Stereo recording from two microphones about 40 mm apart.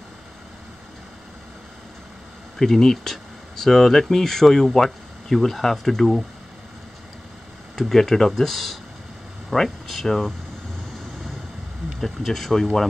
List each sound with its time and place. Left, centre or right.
2.6 s speech: centre
7.7 s speech: centre
12.0 s speech: centre